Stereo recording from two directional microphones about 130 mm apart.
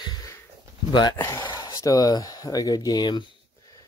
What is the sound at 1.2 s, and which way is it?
Speech, 30° left (ahead or behind).